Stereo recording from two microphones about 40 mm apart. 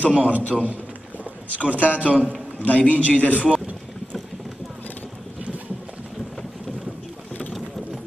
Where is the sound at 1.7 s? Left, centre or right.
Right.